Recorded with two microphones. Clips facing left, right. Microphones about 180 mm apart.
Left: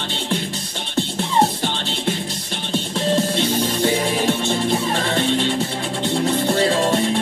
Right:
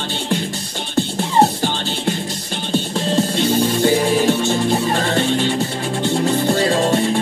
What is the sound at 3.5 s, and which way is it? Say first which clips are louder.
Music: right 4 dB; 40° right (ahead or behind).